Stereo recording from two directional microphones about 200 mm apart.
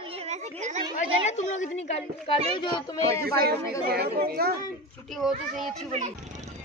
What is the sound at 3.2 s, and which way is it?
Speech, 50° right (ahead or behind).